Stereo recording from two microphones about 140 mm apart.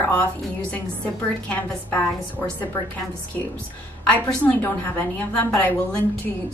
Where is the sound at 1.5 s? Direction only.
10° left (ahead or behind).